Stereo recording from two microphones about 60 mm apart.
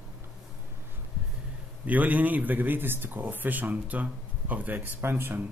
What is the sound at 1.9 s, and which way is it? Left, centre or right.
Speech, right.